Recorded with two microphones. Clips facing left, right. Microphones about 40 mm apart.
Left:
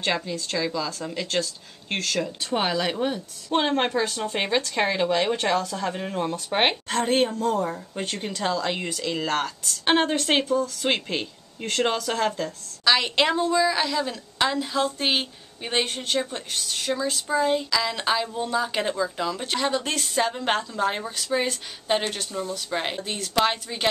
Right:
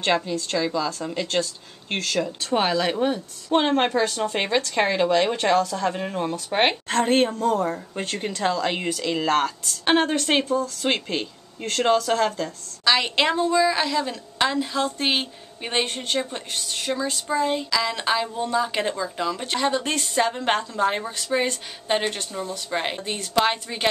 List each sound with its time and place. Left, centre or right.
0.0 s a woman's voice: centre
8.8 s speech: centre
9.8 s speech: centre